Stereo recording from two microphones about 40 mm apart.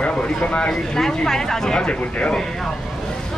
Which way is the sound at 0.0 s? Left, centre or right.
Left.